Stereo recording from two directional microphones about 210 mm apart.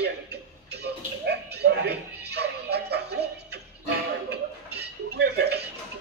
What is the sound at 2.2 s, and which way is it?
Music, 50° right (ahead or behind).